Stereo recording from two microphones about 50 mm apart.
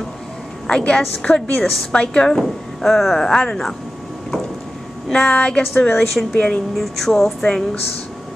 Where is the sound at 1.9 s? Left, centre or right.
Centre.